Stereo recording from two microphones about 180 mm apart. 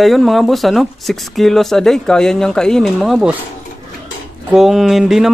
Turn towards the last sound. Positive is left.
turn(degrees=0)  # may be behind; listen again after turning